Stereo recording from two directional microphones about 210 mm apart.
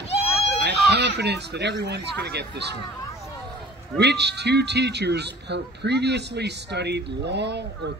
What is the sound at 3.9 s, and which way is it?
Speech, 55° right (ahead or behind).